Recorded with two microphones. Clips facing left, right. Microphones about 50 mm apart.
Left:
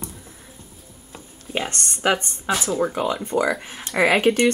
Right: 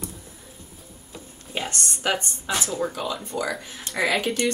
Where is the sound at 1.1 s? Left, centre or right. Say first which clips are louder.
Left 4 dB; left.